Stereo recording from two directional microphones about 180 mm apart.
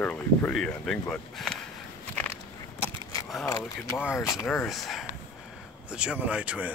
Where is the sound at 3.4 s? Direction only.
15° left (ahead or behind).